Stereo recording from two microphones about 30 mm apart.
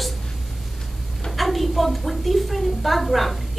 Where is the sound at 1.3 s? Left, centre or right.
Centre.